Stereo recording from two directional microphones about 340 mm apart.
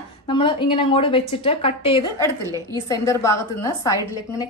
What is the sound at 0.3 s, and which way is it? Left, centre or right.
A woman's voice, centre.